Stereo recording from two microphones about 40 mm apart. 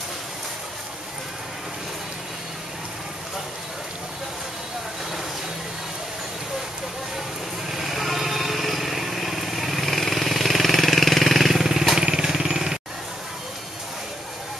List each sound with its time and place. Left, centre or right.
7.7 s lawn mower: centre
12.0 s vehicle: right
12.3 s a sound: centre